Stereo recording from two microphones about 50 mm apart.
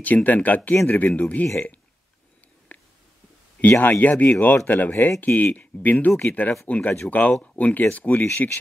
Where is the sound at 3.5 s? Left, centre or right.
Left.